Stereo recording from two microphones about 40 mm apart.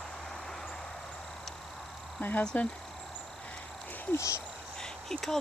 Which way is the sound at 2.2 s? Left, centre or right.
Left.